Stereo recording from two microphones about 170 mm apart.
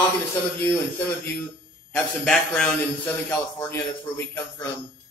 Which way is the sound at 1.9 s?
5° left (ahead or behind).